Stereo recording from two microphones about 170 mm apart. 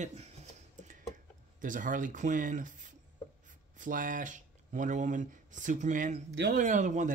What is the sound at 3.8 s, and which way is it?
Speech, 50° right (ahead or behind).